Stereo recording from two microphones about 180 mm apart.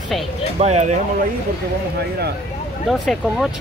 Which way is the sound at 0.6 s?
40° right (ahead or behind).